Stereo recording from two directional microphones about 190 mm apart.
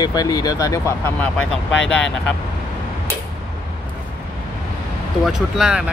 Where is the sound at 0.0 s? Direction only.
20° left (ahead or behind); by 2.3 s 5° left (ahead or behind).